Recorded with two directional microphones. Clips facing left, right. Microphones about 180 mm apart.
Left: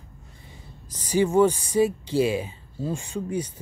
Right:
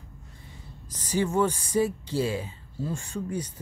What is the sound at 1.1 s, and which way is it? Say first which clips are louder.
Speech: left 6 dB; 10° left (ahead or behind).